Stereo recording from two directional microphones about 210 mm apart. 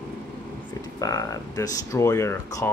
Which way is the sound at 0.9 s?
15° left (ahead or behind).